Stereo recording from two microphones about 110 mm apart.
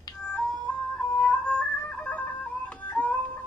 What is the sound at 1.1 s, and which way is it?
Music, 10° left (ahead or behind).